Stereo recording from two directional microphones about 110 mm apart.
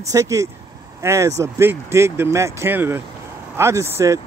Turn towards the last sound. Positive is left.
turn(degrees=-25)  # may be behind; listen again after turning